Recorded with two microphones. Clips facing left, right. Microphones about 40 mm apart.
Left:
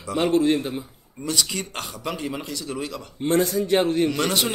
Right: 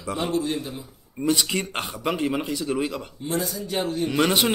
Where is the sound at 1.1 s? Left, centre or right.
Right.